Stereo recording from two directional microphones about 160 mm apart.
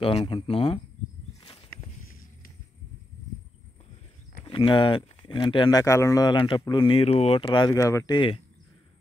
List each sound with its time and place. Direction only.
0.0 s speech: 35° left (ahead or behind)
4.5 s speech: 30° left (ahead or behind)
7.4 s speech: 25° left (ahead or behind)